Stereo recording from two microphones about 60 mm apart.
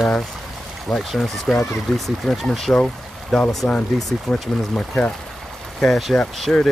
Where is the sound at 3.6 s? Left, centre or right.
Centre.